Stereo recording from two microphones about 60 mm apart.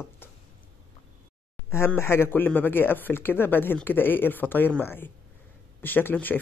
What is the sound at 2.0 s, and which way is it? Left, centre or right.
A man's voice, left.